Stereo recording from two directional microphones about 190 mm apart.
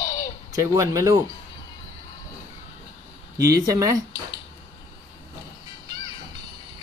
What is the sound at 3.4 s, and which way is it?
Speech, 15° right (ahead or behind).